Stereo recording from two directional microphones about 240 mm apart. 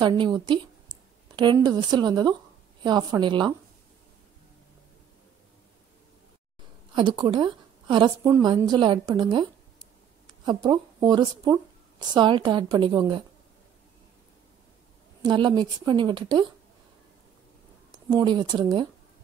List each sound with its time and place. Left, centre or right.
0.0 s a woman's voice: centre
7.0 s speech: centre
15.2 s speech: centre
18.1 s speech: centre